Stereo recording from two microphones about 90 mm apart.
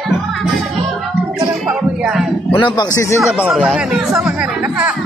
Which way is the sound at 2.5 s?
60° left (ahead or behind).